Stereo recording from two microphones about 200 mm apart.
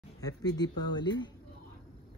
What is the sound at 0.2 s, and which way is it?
Speech, 20° left (ahead or behind).